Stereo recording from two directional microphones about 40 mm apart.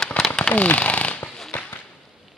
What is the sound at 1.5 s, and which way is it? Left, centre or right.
Whip, left.